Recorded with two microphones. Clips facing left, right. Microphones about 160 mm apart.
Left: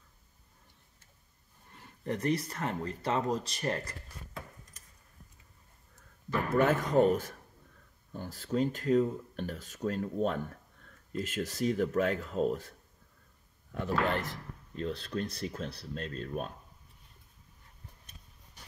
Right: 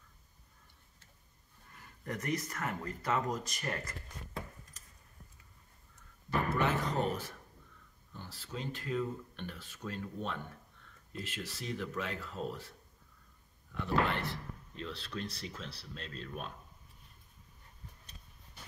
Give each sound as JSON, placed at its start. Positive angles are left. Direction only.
{"t": 1.8, "sound": "speech", "side_deg": 30}
{"t": 6.5, "sound": "speech", "side_deg": 50}